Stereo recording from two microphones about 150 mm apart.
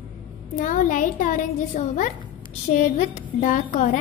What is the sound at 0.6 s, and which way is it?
A woman's voice, 60° left (ahead or behind).